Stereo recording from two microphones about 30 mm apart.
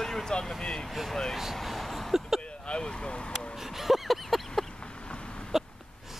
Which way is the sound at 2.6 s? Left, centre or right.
Left.